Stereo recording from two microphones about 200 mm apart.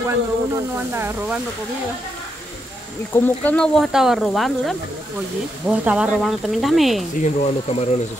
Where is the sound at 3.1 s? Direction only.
10° left (ahead or behind).